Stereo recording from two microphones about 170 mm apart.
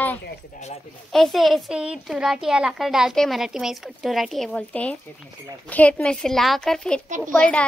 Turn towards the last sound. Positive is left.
turn(degrees=5)  # may be behind; listen again after turning